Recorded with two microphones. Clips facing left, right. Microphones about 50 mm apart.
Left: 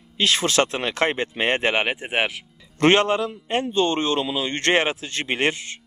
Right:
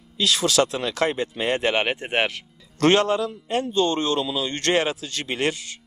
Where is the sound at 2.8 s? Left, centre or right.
Left.